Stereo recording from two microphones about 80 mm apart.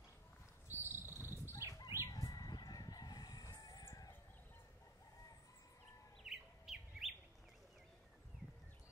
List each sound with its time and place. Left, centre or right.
0.7 s insect: right
1.5 s bird flight: left
1.9 s crowing: left
6.2 s bird: centre